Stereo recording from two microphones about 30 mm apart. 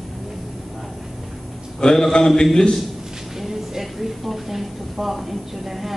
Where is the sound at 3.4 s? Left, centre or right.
Centre.